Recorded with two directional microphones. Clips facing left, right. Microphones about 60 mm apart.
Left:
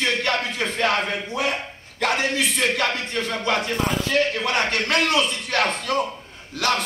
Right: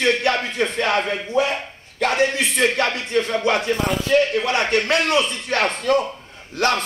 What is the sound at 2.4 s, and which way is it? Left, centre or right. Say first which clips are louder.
Speech: right 3 dB; right.